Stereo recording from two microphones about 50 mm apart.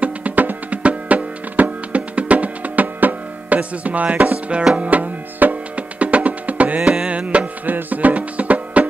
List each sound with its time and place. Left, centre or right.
0.0 s music: right
6.8 s music: centre